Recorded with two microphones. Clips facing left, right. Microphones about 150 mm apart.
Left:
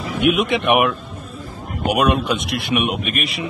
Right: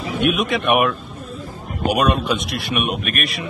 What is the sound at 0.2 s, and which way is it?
Speech, 20° left (ahead or behind).